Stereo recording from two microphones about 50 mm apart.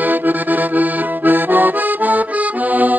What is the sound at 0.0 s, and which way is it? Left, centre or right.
Accordion, right.